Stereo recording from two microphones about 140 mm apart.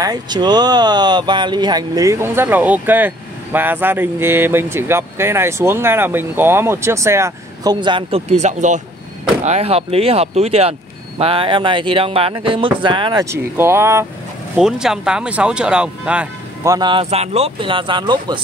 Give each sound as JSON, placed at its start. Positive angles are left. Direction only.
{"t": 0.0, "sound": "speech", "side_deg": -30}
{"t": 8.3, "sound": "speech", "side_deg": -55}
{"t": 13.2, "sound": "speech", "side_deg": -20}
{"t": 14.6, "sound": "speech", "side_deg": -5}
{"t": 16.6, "sound": "speech", "side_deg": -25}
{"t": 16.9, "sound": "speech", "side_deg": -45}